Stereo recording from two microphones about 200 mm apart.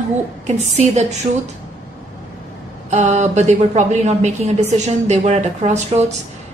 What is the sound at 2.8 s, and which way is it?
A woman's voice, 35° right (ahead or behind).